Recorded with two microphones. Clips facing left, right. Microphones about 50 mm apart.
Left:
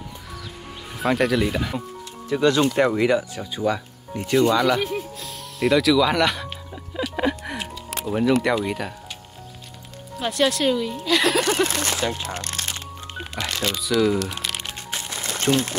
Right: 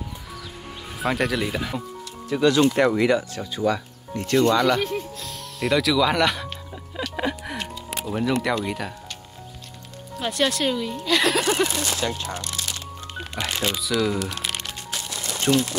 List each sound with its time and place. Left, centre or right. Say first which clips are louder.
0.9 s speech: left 3 dB; centre
2.8 s speech: even; centre
10.1 s speech: left 2 dB; centre
11.7 s speech: left 1 dB; left
12.4 s music: left 1 dB; left
13.1 s music: even; centre
13.5 s speech: even; centre
13.7 s speech: left 6 dB; centre
14.9 s music: left 2 dB; left
15.3 s speech: even; left